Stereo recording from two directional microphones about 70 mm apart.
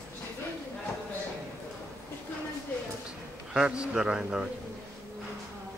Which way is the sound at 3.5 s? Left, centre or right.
Centre.